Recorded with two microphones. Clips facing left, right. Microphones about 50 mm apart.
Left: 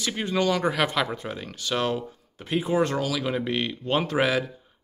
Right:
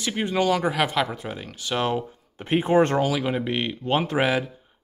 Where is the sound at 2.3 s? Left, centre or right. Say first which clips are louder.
Right 5 dB; right.